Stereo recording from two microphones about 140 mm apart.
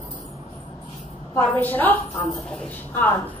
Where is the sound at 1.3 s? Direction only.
10° left (ahead or behind).